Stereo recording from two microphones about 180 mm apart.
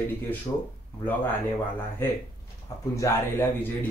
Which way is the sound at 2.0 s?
10° left (ahead or behind).